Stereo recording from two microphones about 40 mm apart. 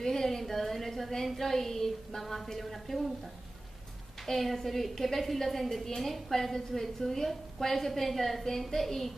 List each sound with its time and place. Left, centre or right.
0.0 s a woman's voice: centre
4.3 s a woman's voice: centre